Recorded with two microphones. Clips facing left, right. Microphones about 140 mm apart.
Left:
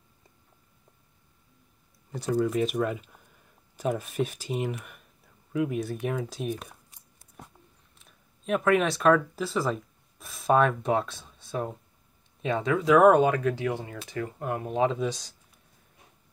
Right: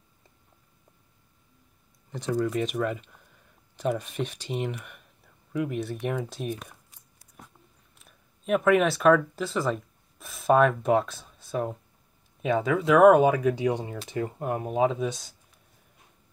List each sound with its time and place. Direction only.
2.0 s speech: 5° left (ahead or behind)
8.0 s speech: centre (ahead or behind); by 14.6 s 25° right (ahead or behind)
14.7 s speech: 5° right (ahead or behind)